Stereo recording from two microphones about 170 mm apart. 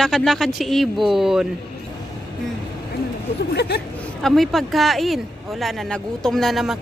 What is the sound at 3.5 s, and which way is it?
Speech, 75° left (ahead or behind).